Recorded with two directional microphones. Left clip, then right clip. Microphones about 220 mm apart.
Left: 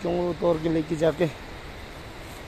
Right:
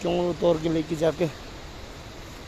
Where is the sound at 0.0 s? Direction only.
10° right (ahead or behind).